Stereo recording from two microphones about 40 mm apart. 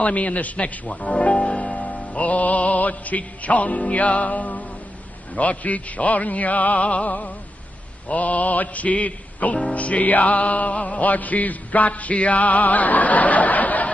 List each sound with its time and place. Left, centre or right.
0.0 s music: left
5.3 s a man's voice: left
5.6 s music: left